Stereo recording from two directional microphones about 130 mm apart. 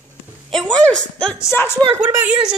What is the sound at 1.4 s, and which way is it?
Speech, 20° left (ahead or behind).